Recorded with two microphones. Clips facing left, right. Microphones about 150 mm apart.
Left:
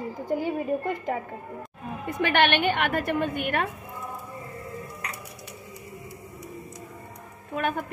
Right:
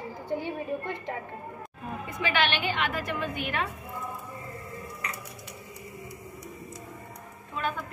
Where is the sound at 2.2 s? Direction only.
55° left (ahead or behind).